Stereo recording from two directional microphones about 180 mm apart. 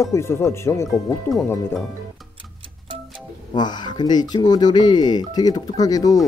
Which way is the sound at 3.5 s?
25° left (ahead or behind).